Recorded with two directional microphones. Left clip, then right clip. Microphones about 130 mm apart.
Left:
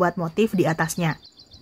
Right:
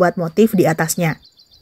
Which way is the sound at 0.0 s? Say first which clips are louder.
Right 7 dB; 20° right (ahead or behind).